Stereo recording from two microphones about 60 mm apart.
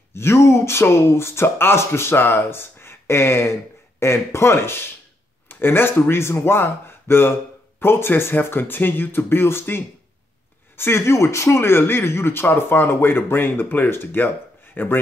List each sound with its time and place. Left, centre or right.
0.1 s speech: left